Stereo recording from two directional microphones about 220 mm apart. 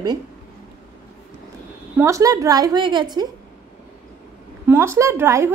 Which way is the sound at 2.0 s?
15° right (ahead or behind).